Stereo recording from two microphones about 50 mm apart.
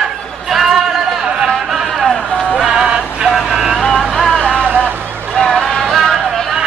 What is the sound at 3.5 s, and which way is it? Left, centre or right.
Vehicle, centre.